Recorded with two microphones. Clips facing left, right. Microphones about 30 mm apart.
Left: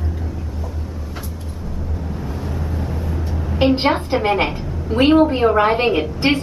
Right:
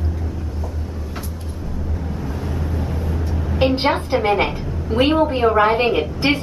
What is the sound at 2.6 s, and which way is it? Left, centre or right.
A woman's voice, centre.